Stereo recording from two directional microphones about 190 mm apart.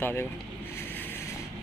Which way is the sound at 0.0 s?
10° left (ahead or behind).